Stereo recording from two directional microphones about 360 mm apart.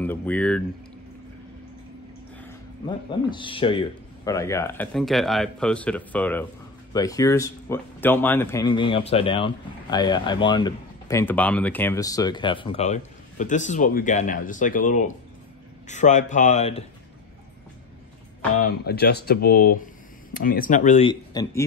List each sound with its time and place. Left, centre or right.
0.0 s speech: centre
3.1 s speech: centre
18.6 s speech: left; by 21.6 s centre